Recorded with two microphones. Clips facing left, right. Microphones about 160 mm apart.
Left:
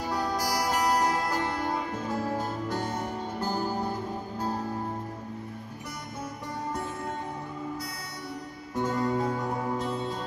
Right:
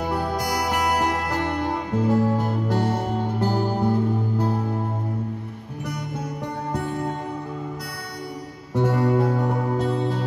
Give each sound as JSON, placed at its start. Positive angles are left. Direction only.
{"t": 0.0, "sound": "music", "side_deg": -60}
{"t": 6.7, "sound": "music", "side_deg": -70}
{"t": 8.7, "sound": "music", "side_deg": -65}